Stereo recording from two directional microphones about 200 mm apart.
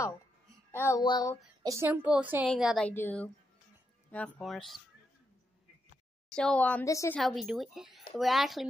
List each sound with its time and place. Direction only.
0.7 s speech: 10° left (ahead or behind)
1.6 s a woman's voice: 15° right (ahead or behind)
6.3 s speech: 5° left (ahead or behind)
7.2 s speech: centre (ahead or behind)